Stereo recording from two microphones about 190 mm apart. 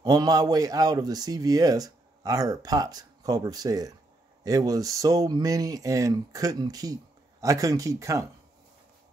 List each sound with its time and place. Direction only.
0.0 s a man's voice: 20° right (ahead or behind)